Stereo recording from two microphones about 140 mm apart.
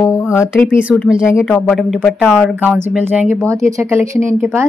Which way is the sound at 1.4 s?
Centre (ahead or behind).